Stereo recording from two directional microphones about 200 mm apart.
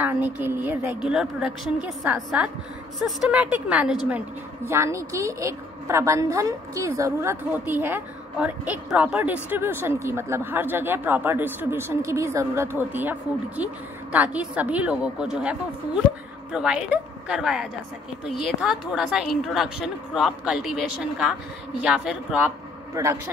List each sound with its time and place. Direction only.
0.0 s a woman's voice: 10° right (ahead or behind)
16.5 s a woman's voice: 5° right (ahead or behind)
21.8 s a woman's voice: 5° right (ahead or behind)
23.0 s a woman's voice: 20° right (ahead or behind)